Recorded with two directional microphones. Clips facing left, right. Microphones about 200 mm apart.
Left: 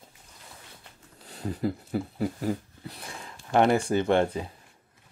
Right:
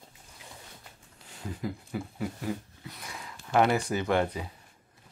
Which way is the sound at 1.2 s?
35° left (ahead or behind).